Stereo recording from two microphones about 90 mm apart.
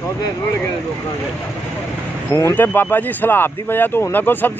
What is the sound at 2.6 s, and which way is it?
Speech, 20° left (ahead or behind).